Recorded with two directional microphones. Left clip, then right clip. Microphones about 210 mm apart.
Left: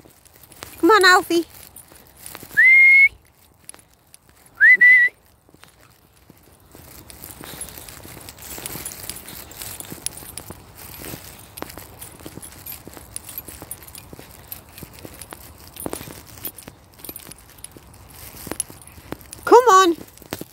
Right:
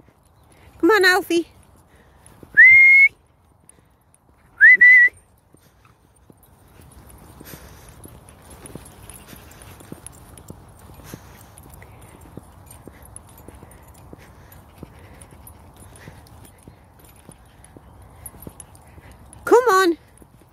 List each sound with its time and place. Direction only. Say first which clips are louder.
0.7 s speech: left 2 dB; 15° right (ahead or behind)
2.6 s whistling: right 2 dB; 15° right (ahead or behind)
4.6 s whistling: right 2 dB; 15° right (ahead or behind)
14.1 s keys jangling: left 1 dB; 50° left (ahead or behind)
19.4 s a sound: left 3 dB; 15° right (ahead or behind)